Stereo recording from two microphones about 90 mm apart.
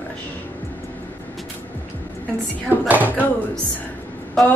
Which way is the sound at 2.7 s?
20° right (ahead or behind).